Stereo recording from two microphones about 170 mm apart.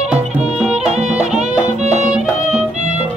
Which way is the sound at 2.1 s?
5° right (ahead or behind).